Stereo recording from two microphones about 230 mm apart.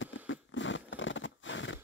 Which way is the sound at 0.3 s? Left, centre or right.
Left.